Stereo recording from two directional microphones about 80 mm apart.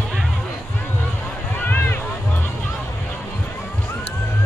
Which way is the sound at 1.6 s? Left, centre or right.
Left.